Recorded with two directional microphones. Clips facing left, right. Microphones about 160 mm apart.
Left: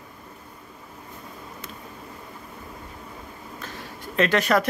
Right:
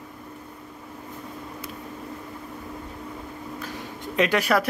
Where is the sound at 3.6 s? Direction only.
15° right (ahead or behind).